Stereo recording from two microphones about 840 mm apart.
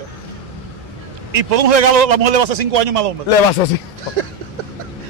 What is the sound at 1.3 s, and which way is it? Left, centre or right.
A man's voice, right.